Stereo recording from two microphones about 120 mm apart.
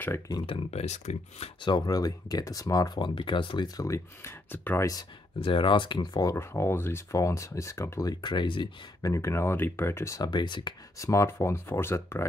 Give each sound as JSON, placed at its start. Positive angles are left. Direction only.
{"t": 0.5, "sound": "speech", "side_deg": 60}
{"t": 1.6, "sound": "speech", "side_deg": 40}
{"t": 5.4, "sound": "speech", "side_deg": 45}
{"t": 6.3, "sound": "speech", "side_deg": 20}
{"t": 9.0, "sound": "speech", "side_deg": 25}
{"t": 11.0, "sound": "speech", "side_deg": 25}